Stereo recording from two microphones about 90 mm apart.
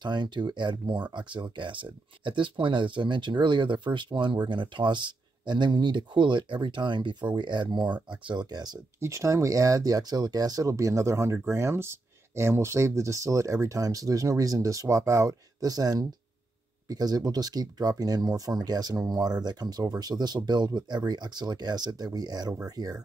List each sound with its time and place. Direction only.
0.0 s speech: 60° right (ahead or behind)
9.0 s speech: 35° right (ahead or behind)